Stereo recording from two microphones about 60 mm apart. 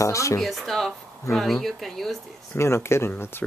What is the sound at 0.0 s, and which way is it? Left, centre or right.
Speech, left.